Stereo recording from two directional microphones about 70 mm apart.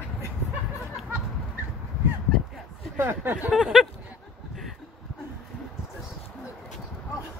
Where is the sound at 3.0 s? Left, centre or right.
Right.